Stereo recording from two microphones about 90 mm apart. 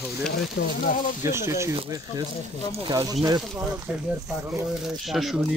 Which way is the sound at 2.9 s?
45° right (ahead or behind).